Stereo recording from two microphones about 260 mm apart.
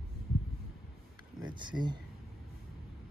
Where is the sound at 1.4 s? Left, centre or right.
Centre.